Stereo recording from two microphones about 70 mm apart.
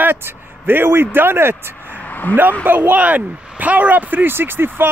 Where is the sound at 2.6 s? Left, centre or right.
Right.